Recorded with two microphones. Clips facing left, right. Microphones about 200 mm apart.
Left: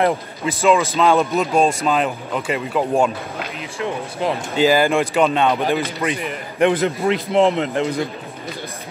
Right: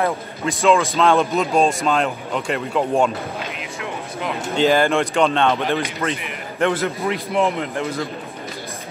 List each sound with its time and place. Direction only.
0.5 s speech: 5° left (ahead or behind)
4.6 s a man's voice: 5° left (ahead or behind)
7.3 s speech: 30° left (ahead or behind)